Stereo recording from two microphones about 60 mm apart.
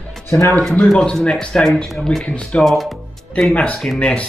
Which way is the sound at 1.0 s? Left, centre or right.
Centre.